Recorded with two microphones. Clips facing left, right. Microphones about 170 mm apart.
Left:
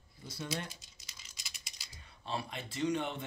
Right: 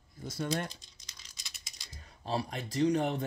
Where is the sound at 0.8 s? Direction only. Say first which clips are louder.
Even; 5° left (ahead or behind).